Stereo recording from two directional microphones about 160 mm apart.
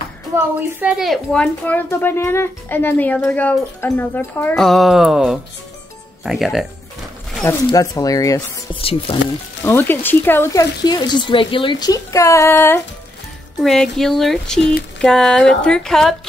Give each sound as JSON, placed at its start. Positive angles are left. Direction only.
{"t": 0.6, "sound": "a woman's voice", "side_deg": -10}
{"t": 4.6, "sound": "speech", "side_deg": 0}
{"t": 7.4, "sound": "speech", "side_deg": 20}
{"t": 8.8, "sound": "speech", "side_deg": 35}
{"t": 9.6, "sound": "speech", "side_deg": 15}
{"t": 13.6, "sound": "speech", "side_deg": 0}